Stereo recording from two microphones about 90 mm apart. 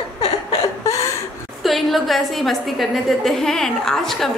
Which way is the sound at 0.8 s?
35° left (ahead or behind).